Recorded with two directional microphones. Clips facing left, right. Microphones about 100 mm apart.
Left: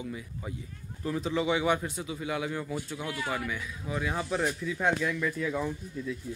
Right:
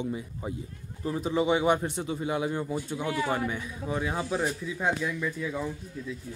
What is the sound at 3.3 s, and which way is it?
Speech, 30° right (ahead or behind).